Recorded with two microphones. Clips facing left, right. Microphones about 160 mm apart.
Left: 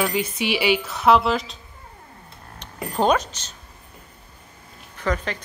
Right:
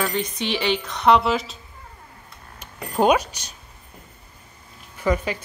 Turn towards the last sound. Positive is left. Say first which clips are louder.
# right 3 dB
turn(degrees=-10)  # may be behind; listen again after turning